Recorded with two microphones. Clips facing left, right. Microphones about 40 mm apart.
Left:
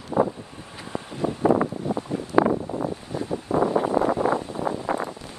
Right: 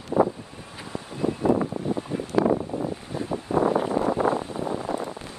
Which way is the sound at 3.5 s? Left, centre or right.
Right.